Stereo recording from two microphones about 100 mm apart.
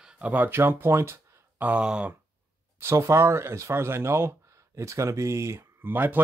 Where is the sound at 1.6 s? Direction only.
10° right (ahead or behind).